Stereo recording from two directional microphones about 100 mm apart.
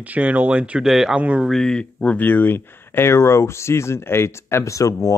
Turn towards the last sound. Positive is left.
turn(degrees=30)  # may be behind; listen again after turning